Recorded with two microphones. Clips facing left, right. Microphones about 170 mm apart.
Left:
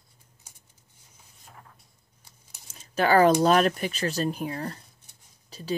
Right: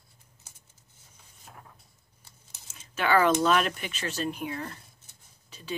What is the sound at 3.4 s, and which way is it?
Speech, 40° left (ahead or behind).